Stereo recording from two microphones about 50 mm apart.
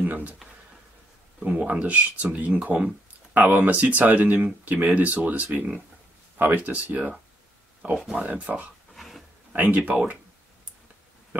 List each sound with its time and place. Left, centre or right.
0.0 s speech: right
1.4 s speech: centre
1.7 s speech: right
8.9 s pig: centre
9.6 s speech: right